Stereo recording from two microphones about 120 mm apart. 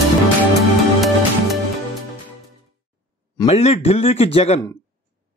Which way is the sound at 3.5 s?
60° left (ahead or behind).